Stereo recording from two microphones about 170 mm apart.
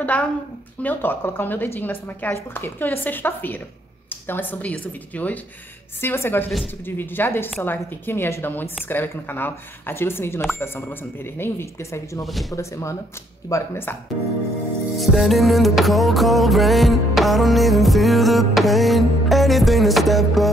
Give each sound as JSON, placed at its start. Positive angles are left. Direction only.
{"t": 0.0, "sound": "a woman's voice", "side_deg": 10}
{"t": 12.3, "sound": "music", "side_deg": 0}
{"t": 12.5, "sound": "speech", "side_deg": 15}
{"t": 15.0, "sound": "music", "side_deg": 0}